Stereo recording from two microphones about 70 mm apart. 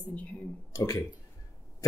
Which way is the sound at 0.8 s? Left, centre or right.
Left.